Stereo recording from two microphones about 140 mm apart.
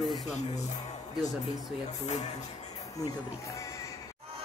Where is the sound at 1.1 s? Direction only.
Centre (ahead or behind).